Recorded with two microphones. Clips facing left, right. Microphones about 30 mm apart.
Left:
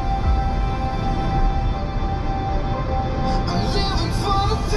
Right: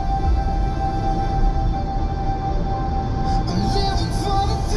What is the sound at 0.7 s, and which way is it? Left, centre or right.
Music, left.